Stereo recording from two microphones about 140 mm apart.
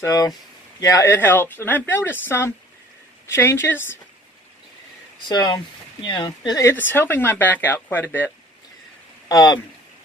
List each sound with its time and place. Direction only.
0.0 s speech: 25° left (ahead or behind)
5.3 s speech: 30° left (ahead or behind)
6.6 s speech: 15° left (ahead or behind)
9.3 s speech: 30° left (ahead or behind)